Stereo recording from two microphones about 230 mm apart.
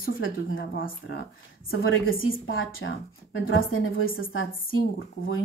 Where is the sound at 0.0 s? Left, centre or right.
Left.